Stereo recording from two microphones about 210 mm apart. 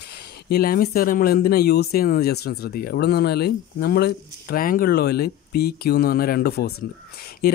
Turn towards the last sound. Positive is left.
turn(degrees=45)  # may be behind; listen again after turning